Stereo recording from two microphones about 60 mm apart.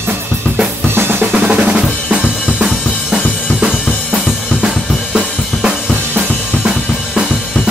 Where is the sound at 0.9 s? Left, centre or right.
Right.